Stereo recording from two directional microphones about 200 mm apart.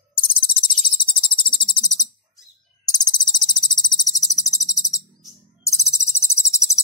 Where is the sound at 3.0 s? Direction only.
20° left (ahead or behind).